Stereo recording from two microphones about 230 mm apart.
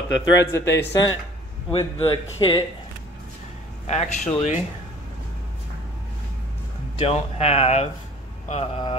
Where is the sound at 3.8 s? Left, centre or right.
Left.